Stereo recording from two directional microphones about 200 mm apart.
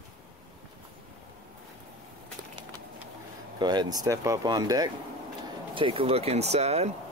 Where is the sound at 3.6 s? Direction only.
20° right (ahead or behind).